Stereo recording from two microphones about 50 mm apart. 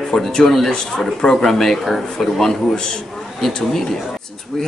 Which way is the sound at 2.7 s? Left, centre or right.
Centre.